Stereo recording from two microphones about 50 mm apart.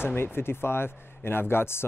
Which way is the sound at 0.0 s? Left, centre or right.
Left.